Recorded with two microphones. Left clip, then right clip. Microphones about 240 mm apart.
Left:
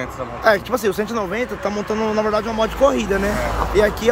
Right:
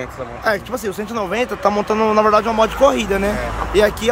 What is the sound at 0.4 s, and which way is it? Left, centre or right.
Speech, centre.